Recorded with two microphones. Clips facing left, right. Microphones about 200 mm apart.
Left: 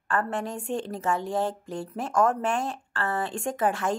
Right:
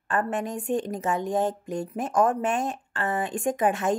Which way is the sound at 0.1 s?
20° right (ahead or behind).